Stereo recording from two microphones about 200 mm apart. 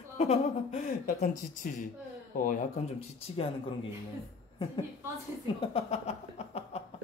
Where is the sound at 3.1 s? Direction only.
30° left (ahead or behind).